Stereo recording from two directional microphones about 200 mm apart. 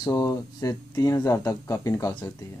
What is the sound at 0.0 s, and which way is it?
Speech, 15° left (ahead or behind).